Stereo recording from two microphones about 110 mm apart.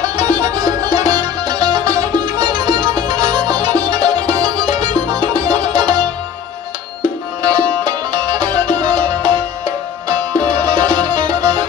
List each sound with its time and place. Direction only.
0.0 s music: 40° right (ahead or behind)
7.0 s music: 40° right (ahead or behind)